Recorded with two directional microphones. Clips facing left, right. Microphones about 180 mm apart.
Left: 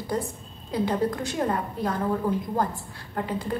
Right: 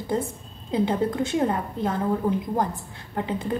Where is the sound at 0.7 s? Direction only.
25° right (ahead or behind).